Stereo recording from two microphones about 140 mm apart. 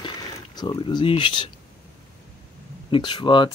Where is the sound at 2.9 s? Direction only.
35° left (ahead or behind).